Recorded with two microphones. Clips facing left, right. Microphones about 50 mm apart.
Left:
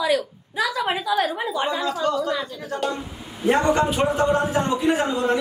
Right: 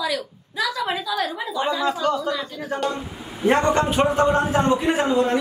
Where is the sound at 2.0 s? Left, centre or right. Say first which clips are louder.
Left 2 dB; centre.